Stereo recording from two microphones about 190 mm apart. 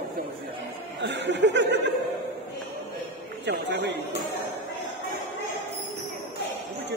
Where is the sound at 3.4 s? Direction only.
65° right (ahead or behind).